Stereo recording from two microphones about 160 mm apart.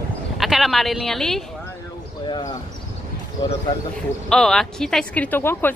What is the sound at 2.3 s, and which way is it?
Speech, 25° left (ahead or behind).